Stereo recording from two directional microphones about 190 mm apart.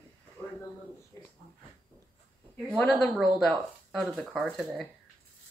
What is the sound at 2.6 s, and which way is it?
Speech, 5° left (ahead or behind).